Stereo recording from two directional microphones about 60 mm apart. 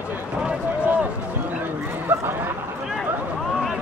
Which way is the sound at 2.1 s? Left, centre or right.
Right.